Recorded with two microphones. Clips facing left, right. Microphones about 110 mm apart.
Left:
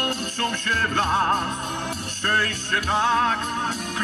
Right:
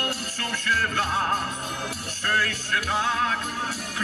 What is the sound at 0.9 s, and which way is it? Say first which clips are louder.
Speech: left 4 dB; 25° left (ahead or behind).